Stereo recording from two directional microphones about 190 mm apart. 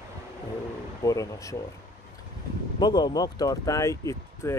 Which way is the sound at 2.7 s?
25° left (ahead or behind).